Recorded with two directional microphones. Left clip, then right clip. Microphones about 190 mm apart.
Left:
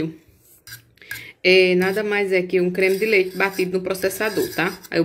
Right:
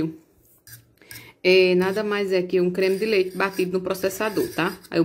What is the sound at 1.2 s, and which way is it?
A woman's voice, 10° right (ahead or behind).